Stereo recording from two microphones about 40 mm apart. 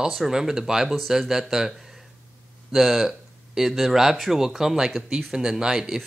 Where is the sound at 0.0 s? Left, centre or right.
Centre.